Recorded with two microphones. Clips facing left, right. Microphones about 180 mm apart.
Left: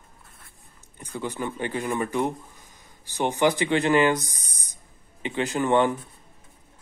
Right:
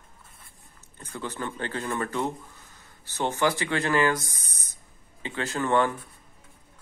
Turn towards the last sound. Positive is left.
turn(degrees=20)  # may be behind; listen again after turning